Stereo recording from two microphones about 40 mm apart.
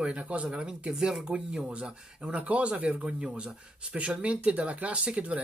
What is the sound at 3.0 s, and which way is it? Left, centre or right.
Speech, right.